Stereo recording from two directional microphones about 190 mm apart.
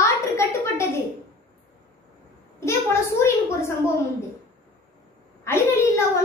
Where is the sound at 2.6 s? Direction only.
15° left (ahead or behind).